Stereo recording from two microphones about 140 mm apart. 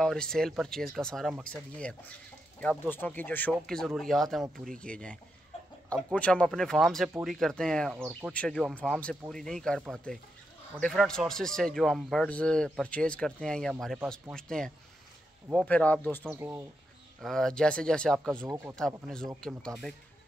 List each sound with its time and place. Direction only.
0.0 s speech: 5° left (ahead or behind)
6.1 s speech: 10° left (ahead or behind)
16.3 s speech: 15° right (ahead or behind)
17.2 s speech: 5° left (ahead or behind)